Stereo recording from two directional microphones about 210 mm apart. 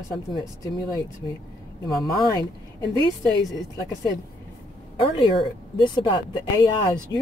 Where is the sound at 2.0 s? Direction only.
15° left (ahead or behind).